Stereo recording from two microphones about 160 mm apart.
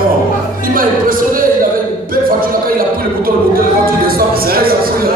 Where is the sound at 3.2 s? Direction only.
70° right (ahead or behind).